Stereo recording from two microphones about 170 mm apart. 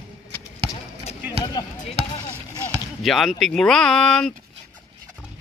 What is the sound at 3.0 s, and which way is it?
Speech, centre (ahead or behind).